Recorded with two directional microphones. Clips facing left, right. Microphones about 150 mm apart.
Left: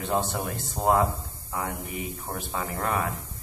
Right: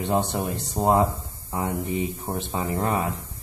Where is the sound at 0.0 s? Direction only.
20° right (ahead or behind).